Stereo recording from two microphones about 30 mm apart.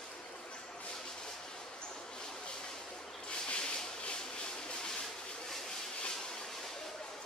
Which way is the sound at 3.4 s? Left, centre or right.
Left.